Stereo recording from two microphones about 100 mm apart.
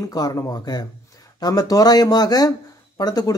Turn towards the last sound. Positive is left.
turn(degrees=40)  # may be behind; listen again after turning